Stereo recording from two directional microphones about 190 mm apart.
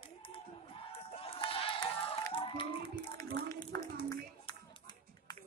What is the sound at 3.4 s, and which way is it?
Clapping, 20° left (ahead or behind).